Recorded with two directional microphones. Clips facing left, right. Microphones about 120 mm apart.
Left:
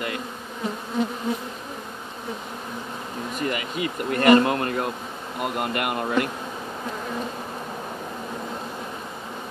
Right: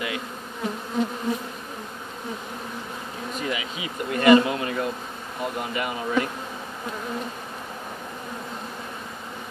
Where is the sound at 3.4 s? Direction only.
55° left (ahead or behind).